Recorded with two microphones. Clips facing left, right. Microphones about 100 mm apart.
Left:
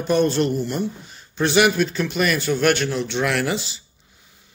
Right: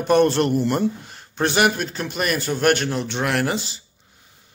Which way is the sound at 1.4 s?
45° right (ahead or behind).